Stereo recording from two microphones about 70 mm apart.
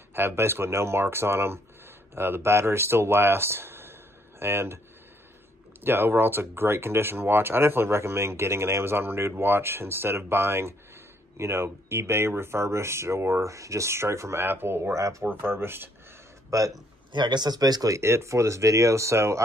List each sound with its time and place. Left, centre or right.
0.1 s speech: right
5.9 s speech: right
15.0 s speech: right
15.2 s speech: right
16.4 s speech: right
17.1 s speech: right
17.9 s speech: right